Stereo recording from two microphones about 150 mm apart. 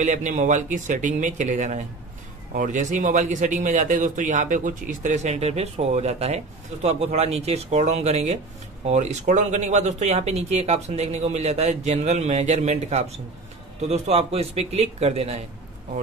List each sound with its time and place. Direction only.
0.0 s a man's voice: 55° right (ahead or behind)